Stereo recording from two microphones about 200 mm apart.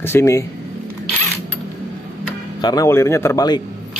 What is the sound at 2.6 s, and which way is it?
Speech, 20° left (ahead or behind).